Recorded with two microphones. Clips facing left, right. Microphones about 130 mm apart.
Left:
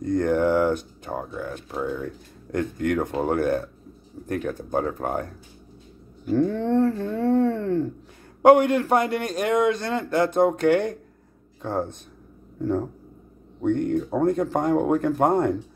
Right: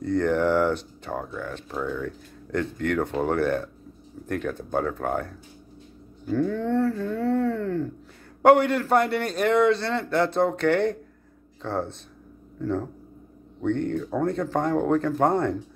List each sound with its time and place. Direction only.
0.0 s speech: 15° left (ahead or behind)
6.2 s speech: 25° left (ahead or behind)
13.6 s speech: 15° left (ahead or behind)